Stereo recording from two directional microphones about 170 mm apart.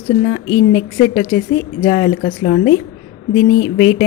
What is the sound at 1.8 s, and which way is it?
Speech, 25° left (ahead or behind).